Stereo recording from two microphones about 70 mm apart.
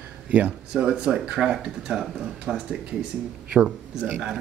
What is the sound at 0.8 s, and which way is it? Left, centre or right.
Speech, centre.